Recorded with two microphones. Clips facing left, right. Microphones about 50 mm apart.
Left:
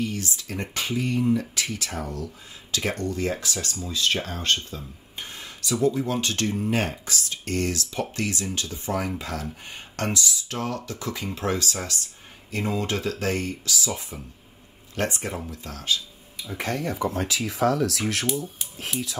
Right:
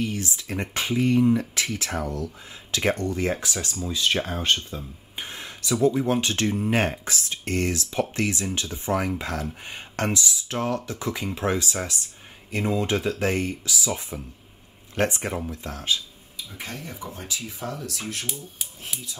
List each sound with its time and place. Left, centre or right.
0.0 s speech: right
15.0 s speech: right
16.5 s speech: left